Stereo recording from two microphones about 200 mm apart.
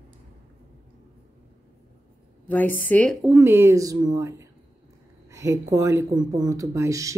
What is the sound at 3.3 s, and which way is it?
A woman's voice, 10° right (ahead or behind).